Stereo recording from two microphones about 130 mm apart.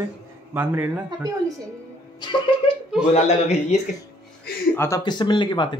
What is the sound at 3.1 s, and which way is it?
Speech, 60° left (ahead or behind).